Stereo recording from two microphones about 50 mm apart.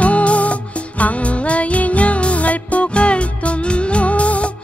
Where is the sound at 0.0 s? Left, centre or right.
Left.